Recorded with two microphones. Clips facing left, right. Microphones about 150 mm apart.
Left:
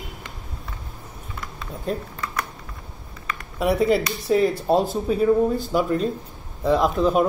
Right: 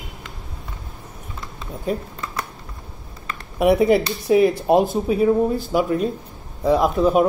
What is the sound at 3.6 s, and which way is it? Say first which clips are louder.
Speech: right 4 dB; 15° right (ahead or behind).